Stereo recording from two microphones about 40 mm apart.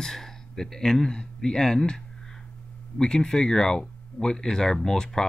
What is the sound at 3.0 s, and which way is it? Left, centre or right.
Speech, centre.